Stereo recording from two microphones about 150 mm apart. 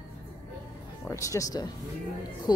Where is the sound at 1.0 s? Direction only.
20° left (ahead or behind).